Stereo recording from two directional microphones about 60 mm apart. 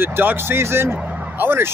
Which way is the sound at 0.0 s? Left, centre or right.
Right.